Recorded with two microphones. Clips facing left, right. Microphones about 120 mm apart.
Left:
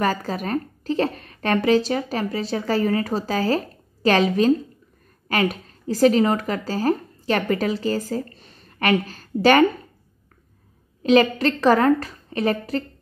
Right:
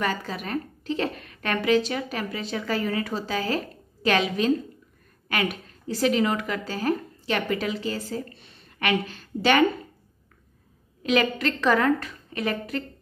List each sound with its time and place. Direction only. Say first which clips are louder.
0.0 s a woman's voice: left 5 dB; 40° left (ahead or behind)
11.0 s a woman's voice: left 7 dB; 35° left (ahead or behind)